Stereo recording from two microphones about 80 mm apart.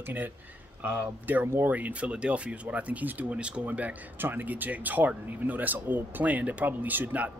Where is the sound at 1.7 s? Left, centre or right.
Centre.